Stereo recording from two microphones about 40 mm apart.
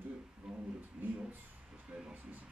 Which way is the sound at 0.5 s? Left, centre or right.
Centre.